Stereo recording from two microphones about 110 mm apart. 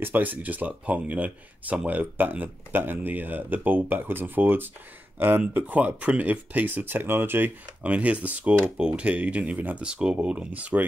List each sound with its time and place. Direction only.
0.0 s speech: 15° right (ahead or behind)